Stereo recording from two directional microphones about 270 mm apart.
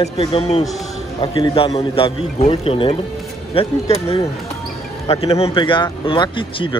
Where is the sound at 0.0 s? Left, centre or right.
Left.